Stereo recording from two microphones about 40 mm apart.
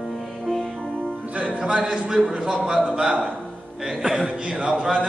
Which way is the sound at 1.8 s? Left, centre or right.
Right.